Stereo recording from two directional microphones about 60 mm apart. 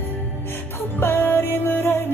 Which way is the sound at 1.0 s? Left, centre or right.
Left.